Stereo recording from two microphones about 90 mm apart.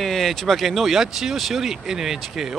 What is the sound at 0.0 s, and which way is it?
Speech, 5° left (ahead or behind).